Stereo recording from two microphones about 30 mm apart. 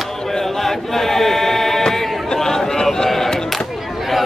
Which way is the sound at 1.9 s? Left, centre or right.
Centre.